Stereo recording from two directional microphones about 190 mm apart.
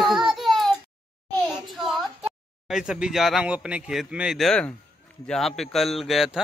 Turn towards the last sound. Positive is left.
turn(degrees=0)  # may be behind; listen again after turning